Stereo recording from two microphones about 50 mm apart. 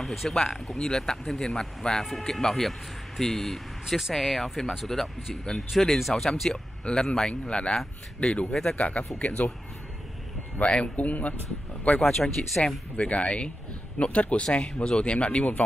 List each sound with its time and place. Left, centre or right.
0.0 s speech: centre
0.7 s speech: centre
3.8 s speech: centre
4.1 s speech: centre
6.5 s speech: centre
8.7 s speech: left
10.6 s speech: left
12.1 s speech: centre
12.9 s speech: left